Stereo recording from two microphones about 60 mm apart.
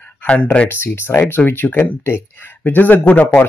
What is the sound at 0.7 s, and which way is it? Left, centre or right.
Speech, left.